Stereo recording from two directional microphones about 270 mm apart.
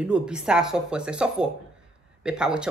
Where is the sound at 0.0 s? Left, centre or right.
Centre.